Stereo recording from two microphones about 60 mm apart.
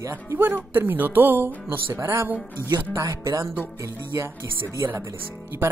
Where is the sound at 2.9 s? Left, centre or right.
Right.